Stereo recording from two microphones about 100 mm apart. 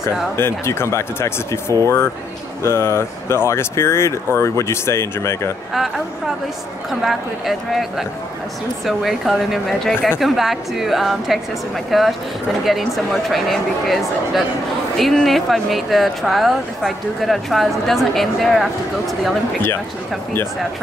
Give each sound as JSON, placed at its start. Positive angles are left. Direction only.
{"t": 0.0, "sound": "speech", "side_deg": 25}
{"t": 2.6, "sound": "speech", "side_deg": 25}
{"t": 5.7, "sound": "speech", "side_deg": 0}
{"t": 8.8, "sound": "speech", "side_deg": 0}